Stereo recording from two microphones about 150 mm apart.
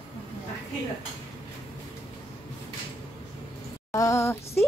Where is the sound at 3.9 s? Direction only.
20° left (ahead or behind).